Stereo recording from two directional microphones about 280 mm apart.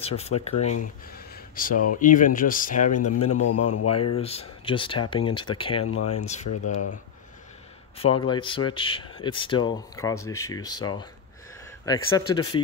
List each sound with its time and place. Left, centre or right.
0.0 s speech: left
3.0 s speech: left
4.2 s speech: left
6.5 s speech: left
8.0 s speech: centre